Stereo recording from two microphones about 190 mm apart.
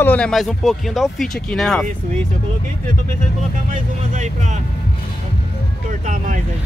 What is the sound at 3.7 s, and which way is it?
Speech, 40° right (ahead or behind).